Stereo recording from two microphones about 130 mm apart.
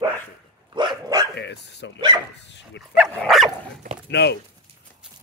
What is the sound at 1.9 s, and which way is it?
Speech, 35° right (ahead or behind).